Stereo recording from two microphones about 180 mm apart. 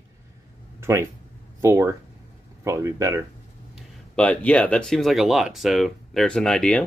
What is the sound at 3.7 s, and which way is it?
Speech, 5° left (ahead or behind).